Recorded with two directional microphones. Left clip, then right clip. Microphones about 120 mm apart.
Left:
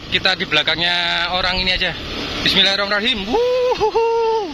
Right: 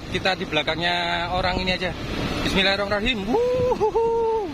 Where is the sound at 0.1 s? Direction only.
5° right (ahead or behind).